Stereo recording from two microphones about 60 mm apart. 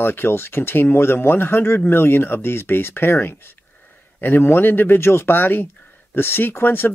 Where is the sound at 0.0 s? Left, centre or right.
Left.